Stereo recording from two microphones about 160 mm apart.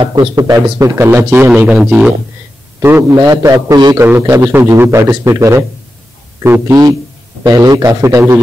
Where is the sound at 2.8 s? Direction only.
15° right (ahead or behind).